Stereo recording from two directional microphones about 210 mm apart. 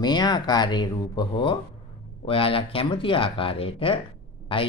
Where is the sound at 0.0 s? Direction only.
20° left (ahead or behind).